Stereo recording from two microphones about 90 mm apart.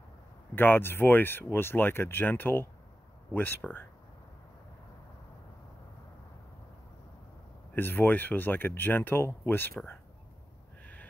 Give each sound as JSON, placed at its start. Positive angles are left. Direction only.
{"t": 0.6, "sound": "speech", "side_deg": 25}
{"t": 7.7, "sound": "speech", "side_deg": 20}